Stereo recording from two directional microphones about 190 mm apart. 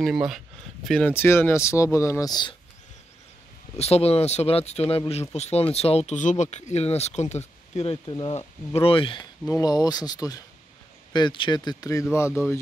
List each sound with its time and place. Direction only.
0.0 s speech: centre (ahead or behind); by 2.5 s 20° left (ahead or behind)
3.7 s speech: 35° left (ahead or behind); by 12.3 s 15° left (ahead or behind)